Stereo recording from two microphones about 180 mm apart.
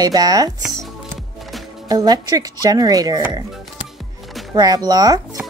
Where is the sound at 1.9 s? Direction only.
20° right (ahead or behind).